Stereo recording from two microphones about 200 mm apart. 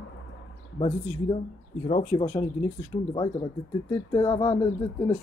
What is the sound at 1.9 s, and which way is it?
A man's voice, 30° left (ahead or behind).